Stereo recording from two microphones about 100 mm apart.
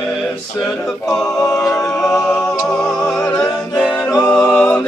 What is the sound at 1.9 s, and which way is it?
Music, 5° left (ahead or behind).